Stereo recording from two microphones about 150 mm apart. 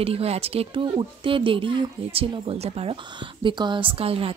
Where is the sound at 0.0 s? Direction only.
40° right (ahead or behind).